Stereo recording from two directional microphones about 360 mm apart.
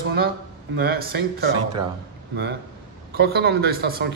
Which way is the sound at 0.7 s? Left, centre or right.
Right.